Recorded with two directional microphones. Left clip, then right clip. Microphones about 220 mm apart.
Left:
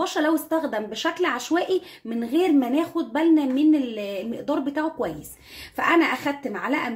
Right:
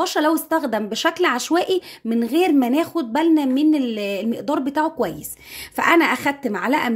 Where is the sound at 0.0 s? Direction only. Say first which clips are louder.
Right 4 dB; 45° right (ahead or behind).